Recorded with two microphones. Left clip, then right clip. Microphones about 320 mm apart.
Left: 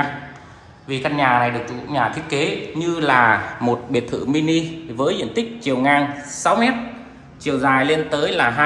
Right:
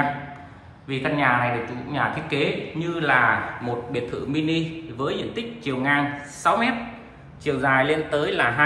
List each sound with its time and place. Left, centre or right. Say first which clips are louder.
0.8 s a man's voice: left 4 dB; centre